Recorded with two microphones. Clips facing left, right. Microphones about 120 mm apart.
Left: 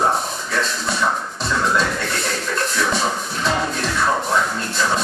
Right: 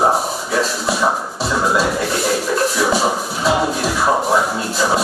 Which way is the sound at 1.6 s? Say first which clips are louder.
Right 3 dB; 5° right (ahead or behind).